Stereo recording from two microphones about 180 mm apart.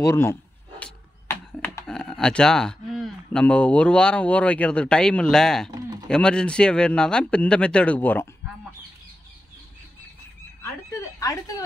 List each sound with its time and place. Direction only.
0.0 s speech: 15° left (ahead or behind)
5.8 s a sound: 20° right (ahead or behind)
6.0 s speech: 5° left (ahead or behind)
11.1 s speech: 20° left (ahead or behind)